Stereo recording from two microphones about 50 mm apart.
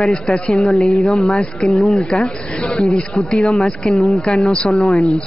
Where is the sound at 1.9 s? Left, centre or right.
Centre.